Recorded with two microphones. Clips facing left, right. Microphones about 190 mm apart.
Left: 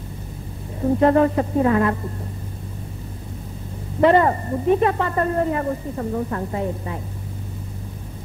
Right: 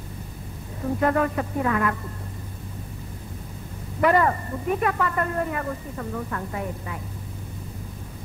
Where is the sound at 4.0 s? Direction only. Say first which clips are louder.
Left 5 dB; 25° left (ahead or behind).